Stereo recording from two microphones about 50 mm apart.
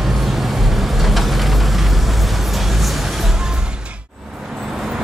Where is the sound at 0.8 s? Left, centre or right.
Centre.